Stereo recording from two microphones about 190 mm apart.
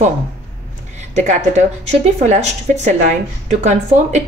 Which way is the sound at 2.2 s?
35° right (ahead or behind).